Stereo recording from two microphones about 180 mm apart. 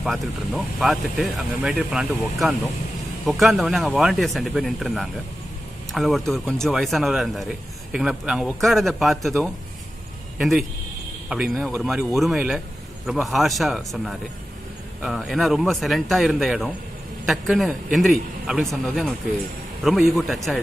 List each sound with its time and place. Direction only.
0.0 s a man's voice: centre (ahead or behind)